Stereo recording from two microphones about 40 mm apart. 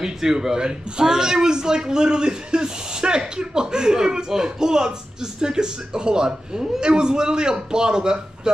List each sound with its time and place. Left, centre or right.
0.0 s speech: centre